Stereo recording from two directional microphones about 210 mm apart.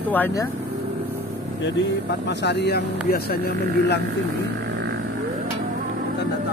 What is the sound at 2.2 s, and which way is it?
Speech, 55° left (ahead or behind).